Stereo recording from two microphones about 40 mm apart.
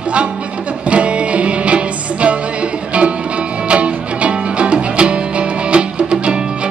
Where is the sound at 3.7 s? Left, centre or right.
Right.